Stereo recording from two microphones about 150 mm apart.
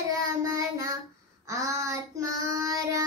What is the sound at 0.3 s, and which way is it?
Child singing, 25° right (ahead or behind).